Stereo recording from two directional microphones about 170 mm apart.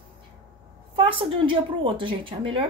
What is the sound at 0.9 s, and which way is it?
A woman's voice, 30° right (ahead or behind).